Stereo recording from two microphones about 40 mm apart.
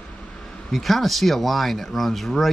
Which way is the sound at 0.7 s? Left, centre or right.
Centre.